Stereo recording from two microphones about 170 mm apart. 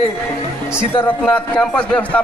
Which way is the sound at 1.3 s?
5° left (ahead or behind).